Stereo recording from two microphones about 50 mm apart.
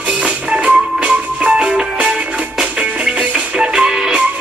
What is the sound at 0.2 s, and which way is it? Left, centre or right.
Music, right.